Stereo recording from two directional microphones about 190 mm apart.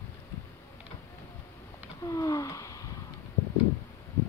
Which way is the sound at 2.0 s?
20° left (ahead or behind).